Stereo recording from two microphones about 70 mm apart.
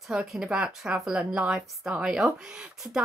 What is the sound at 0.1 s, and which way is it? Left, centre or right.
A woman's voice, centre.